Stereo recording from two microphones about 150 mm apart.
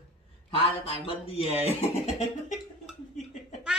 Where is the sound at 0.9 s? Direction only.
40° left (ahead or behind).